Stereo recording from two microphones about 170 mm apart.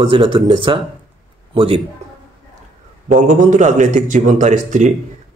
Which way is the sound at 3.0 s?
45° right (ahead or behind).